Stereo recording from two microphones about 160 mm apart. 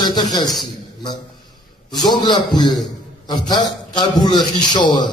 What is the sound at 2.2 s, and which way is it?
A man's voice, 25° left (ahead or behind).